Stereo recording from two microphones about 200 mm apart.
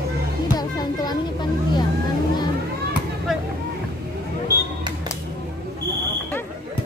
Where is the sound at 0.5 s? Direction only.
20° left (ahead or behind).